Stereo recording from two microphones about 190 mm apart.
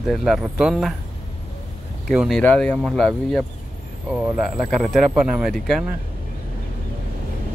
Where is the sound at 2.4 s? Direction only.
5° left (ahead or behind).